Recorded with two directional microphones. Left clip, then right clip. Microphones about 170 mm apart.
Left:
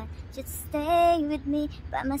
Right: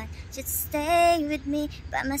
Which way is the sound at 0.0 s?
5° left (ahead or behind).